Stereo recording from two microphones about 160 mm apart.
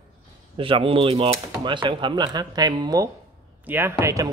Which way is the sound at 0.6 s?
35° right (ahead or behind).